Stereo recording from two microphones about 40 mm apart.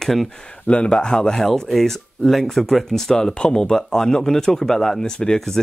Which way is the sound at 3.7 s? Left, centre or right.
Centre.